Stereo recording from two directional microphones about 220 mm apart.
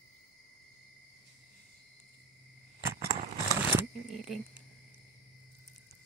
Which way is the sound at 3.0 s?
40° right (ahead or behind).